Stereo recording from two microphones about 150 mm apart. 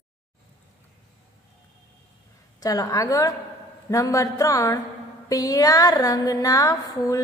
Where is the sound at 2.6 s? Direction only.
25° left (ahead or behind).